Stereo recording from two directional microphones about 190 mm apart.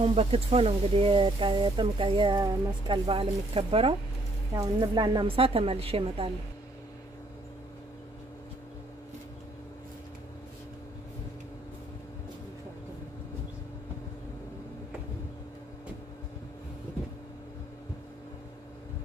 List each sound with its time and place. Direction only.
0.0 s speech: 30° right (ahead or behind)